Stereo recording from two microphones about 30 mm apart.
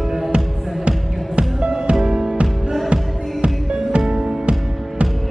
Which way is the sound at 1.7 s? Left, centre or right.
Right.